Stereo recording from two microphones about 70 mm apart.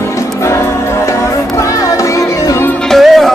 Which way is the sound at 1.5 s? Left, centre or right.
Left.